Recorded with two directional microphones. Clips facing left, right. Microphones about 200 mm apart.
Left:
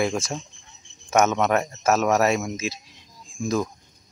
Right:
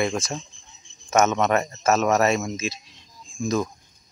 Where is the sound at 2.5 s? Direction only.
10° left (ahead or behind).